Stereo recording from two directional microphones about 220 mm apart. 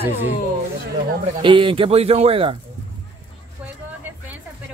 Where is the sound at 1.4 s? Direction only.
25° right (ahead or behind).